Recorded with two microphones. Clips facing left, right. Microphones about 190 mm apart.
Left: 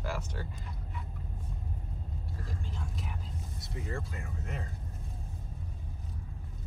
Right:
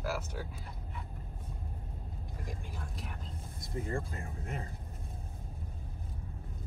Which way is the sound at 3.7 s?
50° right (ahead or behind).